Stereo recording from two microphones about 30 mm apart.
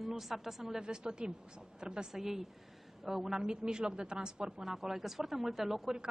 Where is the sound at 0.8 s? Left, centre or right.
Right.